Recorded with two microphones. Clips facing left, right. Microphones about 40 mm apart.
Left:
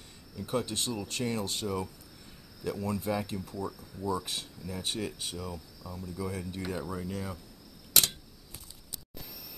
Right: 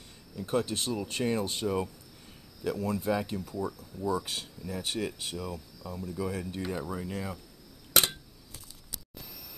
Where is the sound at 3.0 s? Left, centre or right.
Centre.